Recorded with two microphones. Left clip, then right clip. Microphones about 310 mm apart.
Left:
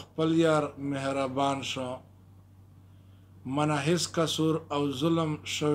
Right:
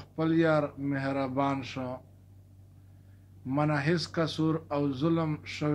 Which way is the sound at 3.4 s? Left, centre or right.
Left.